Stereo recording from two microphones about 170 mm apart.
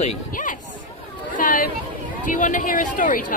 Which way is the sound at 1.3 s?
50° left (ahead or behind).